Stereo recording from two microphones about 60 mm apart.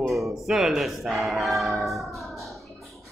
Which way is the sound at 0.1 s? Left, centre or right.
Centre.